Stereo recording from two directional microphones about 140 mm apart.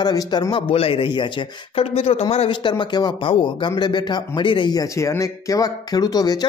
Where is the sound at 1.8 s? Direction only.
45° left (ahead or behind).